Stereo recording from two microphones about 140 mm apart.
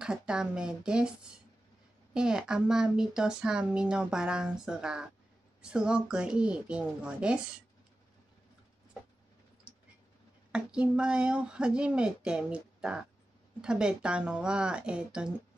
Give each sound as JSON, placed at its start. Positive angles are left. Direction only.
{"t": 0.0, "sound": "speech", "side_deg": -5}
{"t": 2.1, "sound": "speech", "side_deg": -5}
{"t": 9.7, "sound": "a sound", "side_deg": -10}
{"t": 10.5, "sound": "speech", "side_deg": -5}